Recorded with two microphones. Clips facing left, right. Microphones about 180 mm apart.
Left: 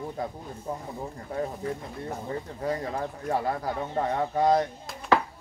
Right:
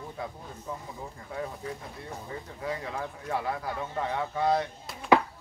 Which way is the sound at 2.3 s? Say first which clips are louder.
Left 4 dB; 40° left (ahead or behind).